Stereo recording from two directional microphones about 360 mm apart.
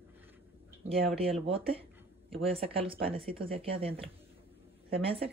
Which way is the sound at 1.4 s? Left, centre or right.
Centre.